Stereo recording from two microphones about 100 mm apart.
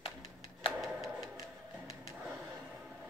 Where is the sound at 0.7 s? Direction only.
Centre (ahead or behind).